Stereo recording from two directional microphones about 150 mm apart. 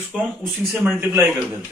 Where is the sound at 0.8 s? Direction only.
15° right (ahead or behind).